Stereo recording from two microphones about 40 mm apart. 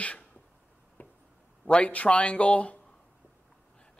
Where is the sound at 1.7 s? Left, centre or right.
Left.